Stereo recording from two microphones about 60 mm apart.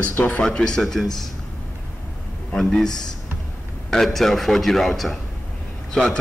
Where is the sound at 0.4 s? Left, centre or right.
Centre.